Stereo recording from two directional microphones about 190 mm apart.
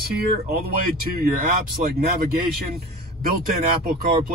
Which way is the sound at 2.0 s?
50° right (ahead or behind).